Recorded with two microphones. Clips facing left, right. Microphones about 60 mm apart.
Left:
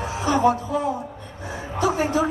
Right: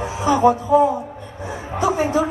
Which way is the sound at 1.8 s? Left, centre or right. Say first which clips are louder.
Right 3 dB; right.